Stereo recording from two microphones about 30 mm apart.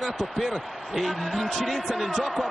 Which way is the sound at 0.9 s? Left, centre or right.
Centre.